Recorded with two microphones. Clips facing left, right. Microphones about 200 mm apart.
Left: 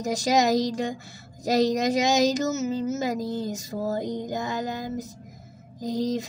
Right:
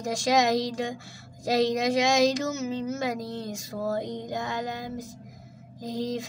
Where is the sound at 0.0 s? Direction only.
Centre (ahead or behind).